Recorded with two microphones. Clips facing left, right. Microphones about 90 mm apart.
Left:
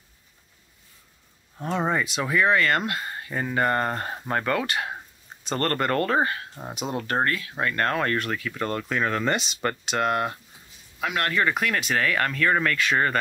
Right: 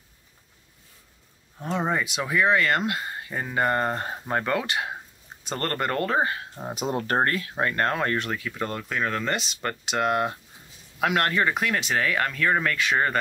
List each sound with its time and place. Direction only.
2.0 s speech: 10° right (ahead or behind)
6.7 s speech: 35° right (ahead or behind)
7.5 s speech: 20° right (ahead or behind)
8.8 s speech: centre (ahead or behind)
9.8 s speech: 15° right (ahead or behind)
11.0 s speech: 55° right (ahead or behind)
11.3 s speech: 15° right (ahead or behind)